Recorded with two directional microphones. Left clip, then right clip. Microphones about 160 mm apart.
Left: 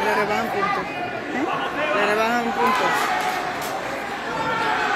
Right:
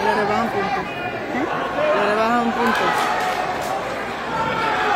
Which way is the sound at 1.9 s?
15° right (ahead or behind).